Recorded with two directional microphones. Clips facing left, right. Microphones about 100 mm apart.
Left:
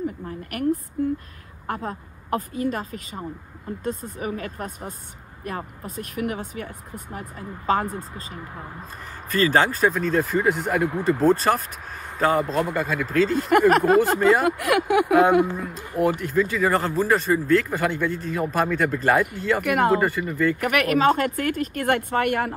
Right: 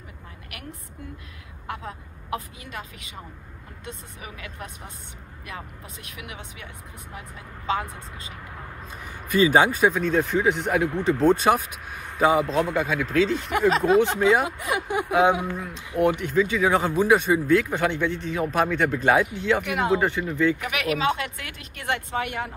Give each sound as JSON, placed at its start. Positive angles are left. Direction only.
{"t": 0.5, "sound": "speech", "side_deg": 45}
{"t": 9.3, "sound": "speech", "side_deg": -10}
{"t": 13.5, "sound": "speech", "side_deg": 55}
{"t": 14.4, "sound": "speech", "side_deg": 65}
{"t": 15.5, "sound": "speech", "side_deg": 0}
{"t": 19.6, "sound": "speech", "side_deg": 50}
{"t": 20.0, "sound": "speech", "side_deg": 0}
{"t": 20.6, "sound": "speech", "side_deg": 50}